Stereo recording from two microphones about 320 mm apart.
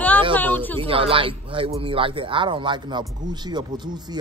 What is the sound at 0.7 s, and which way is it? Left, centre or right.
Speech, centre.